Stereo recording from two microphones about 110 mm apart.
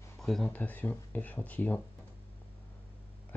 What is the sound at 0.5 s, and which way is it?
Speech, 15° left (ahead or behind).